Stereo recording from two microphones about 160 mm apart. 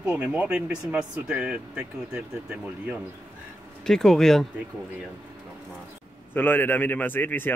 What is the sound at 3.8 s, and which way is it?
Speech, centre (ahead or behind).